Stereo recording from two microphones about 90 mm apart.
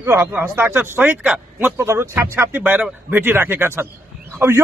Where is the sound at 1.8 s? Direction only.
30° right (ahead or behind).